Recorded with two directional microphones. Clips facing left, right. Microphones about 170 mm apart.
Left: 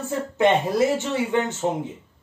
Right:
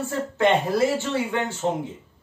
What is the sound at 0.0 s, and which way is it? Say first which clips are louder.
Speech: left 1 dB; 20° left (ahead or behind).